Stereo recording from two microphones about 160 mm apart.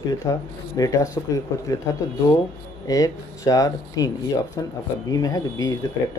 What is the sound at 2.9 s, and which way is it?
Speech, 20° left (ahead or behind).